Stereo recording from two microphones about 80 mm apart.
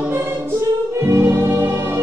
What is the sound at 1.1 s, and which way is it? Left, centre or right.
Music, right.